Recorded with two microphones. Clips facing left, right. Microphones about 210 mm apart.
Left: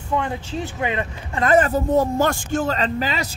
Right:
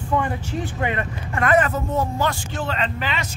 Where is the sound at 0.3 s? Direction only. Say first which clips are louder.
Even; 20° left (ahead or behind).